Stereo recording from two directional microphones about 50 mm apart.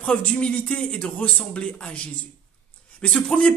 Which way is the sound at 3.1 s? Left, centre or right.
Centre.